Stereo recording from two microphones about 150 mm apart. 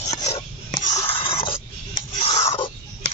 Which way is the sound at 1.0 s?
40° left (ahead or behind).